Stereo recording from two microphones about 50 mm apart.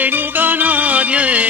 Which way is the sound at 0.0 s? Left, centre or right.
Right.